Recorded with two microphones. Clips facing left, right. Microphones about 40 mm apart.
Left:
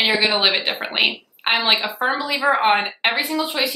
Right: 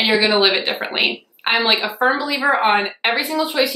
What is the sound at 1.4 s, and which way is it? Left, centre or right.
A woman's voice, centre.